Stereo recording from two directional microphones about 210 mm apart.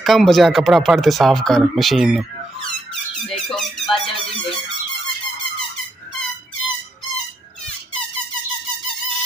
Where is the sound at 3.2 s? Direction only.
Centre (ahead or behind).